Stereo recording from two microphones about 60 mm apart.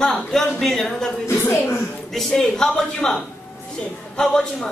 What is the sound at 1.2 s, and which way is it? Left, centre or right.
Speech, left.